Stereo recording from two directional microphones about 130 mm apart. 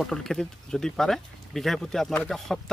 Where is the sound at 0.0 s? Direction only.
Centre (ahead or behind).